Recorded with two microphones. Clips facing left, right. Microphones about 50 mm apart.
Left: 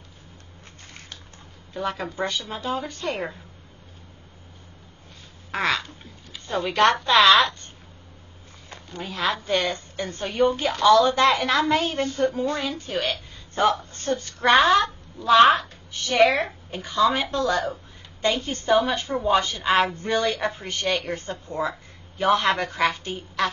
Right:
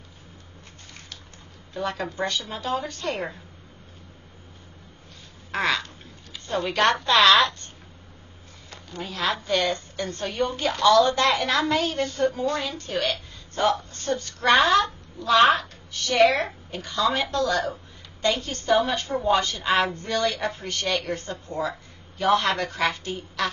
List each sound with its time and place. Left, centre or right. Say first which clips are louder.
1.7 s a woman's voice: even; centre
5.5 s a woman's voice: even; centre
8.9 s a woman's voice: left 1 dB; centre
9.5 s a woman's voice: even; centre
10.2 s a woman's voice: left 4 dB; centre
11.8 s a woman's voice: left 1 dB; left
12.2 s a woman's voice: even; centre
13.6 s a woman's voice: left 2 dB; left
14.5 s a woman's voice: left 1 dB; centre
15.9 s a woman's voice: even; centre
18.4 s a woman's voice: left 2 dB; left